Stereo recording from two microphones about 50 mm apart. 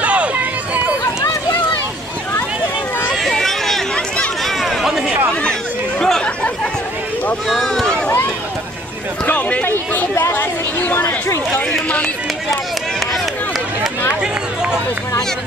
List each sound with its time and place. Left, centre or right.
0.0 s run: right
3.2 s run: centre
4.5 s chatter: centre
5.3 s chatter: centre
7.4 s a sound: centre
9.2 s run: left
10.3 s chatter: left
14.2 s run: centre